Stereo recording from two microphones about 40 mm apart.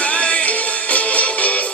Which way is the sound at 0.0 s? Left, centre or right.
Left.